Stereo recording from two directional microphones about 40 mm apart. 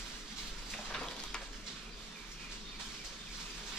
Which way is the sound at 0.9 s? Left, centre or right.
Centre.